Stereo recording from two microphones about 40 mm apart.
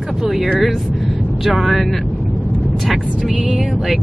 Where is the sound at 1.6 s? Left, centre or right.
Centre.